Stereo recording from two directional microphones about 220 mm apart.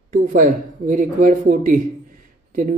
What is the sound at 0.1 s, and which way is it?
Speech, 40° right (ahead or behind).